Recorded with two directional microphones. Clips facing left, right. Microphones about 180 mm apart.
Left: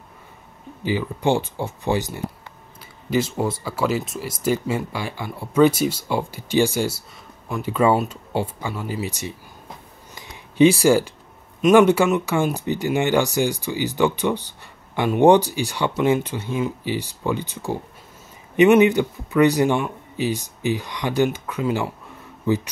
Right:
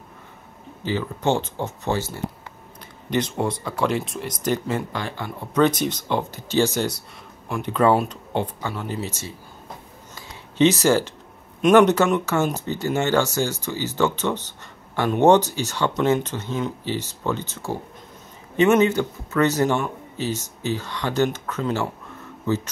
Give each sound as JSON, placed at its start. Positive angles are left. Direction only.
{"t": 0.8, "sound": "speech", "side_deg": 10}
{"t": 3.1, "sound": "speech", "side_deg": 5}
{"t": 10.1, "sound": "a sound", "side_deg": 15}
{"t": 11.6, "sound": "speech", "side_deg": 10}